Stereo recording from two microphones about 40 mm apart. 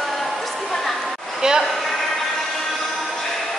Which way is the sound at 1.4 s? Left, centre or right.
Centre.